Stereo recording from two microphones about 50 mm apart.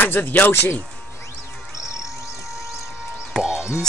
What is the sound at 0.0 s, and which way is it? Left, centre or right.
Speech, left.